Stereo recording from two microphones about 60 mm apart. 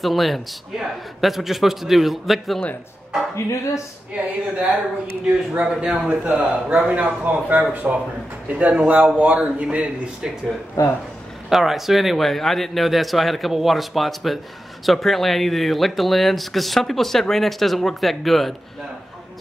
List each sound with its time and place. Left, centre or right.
0.0 s speech: centre
3.3 s speech: left
5.2 s a man's voice: centre
10.8 s speech: left
11.4 s speech: centre